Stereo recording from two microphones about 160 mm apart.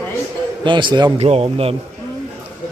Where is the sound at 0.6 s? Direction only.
30° right (ahead or behind).